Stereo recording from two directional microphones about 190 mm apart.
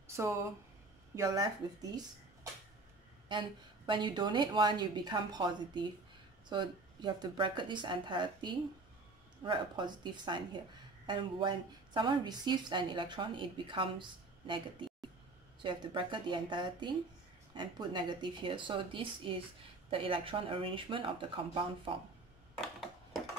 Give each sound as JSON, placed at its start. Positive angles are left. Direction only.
{"t": 0.0, "sound": "speech", "side_deg": -15}
{"t": 3.3, "sound": "speech", "side_deg": -25}